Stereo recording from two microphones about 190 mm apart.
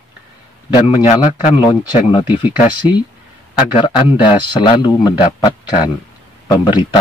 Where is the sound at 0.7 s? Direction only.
30° left (ahead or behind).